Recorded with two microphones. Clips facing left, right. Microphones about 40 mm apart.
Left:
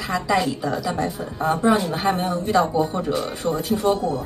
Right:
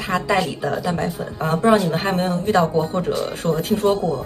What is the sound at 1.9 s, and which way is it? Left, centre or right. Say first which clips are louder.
Speech: right 1 dB; right.